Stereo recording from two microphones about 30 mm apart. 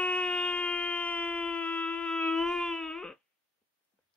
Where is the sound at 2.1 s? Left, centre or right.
Left.